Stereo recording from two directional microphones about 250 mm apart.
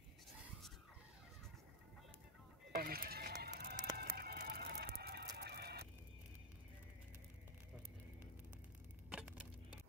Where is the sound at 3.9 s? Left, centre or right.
Right.